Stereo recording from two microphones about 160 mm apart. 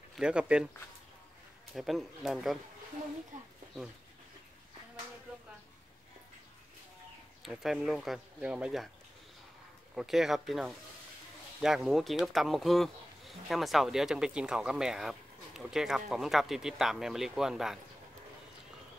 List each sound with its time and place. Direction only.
0.2 s speech: 5° right (ahead or behind)
1.7 s speech: centre (ahead or behind)
7.4 s speech: centre (ahead or behind)
9.9 s speech: centre (ahead or behind)